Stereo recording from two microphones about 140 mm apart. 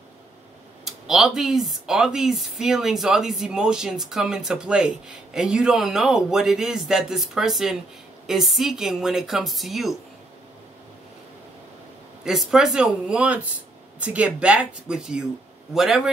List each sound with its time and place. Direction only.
0.8 s speech: centre (ahead or behind)
12.3 s speech: 5° right (ahead or behind)